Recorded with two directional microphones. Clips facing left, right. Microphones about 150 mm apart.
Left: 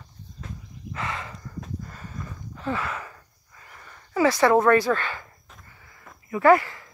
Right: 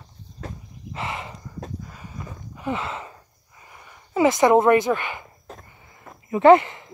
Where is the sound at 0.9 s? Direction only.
20° right (ahead or behind).